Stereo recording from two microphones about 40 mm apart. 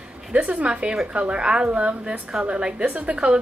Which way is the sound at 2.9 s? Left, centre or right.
Right.